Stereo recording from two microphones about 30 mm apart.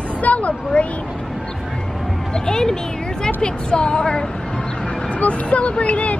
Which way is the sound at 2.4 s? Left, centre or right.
Left.